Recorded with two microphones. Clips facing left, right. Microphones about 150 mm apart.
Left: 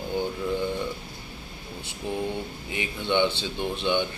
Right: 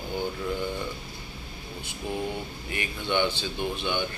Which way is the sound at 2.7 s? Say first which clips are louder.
Left 2 dB; 20° left (ahead or behind).